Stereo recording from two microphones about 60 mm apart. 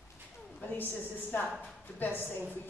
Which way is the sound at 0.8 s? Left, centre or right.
Left.